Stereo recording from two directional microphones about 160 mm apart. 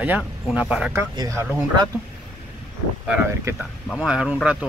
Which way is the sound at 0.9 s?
20° right (ahead or behind).